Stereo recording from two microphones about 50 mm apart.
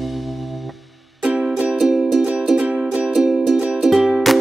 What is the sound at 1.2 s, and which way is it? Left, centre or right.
Music, centre.